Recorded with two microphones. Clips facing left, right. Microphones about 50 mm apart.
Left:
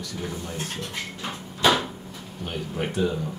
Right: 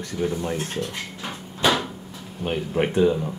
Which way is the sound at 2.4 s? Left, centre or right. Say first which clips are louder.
Right 7 dB; right.